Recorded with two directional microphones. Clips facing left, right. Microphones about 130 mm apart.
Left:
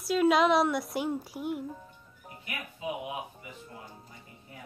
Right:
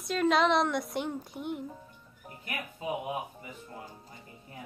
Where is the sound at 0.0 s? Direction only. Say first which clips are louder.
Left 2 dB; 5° left (ahead or behind).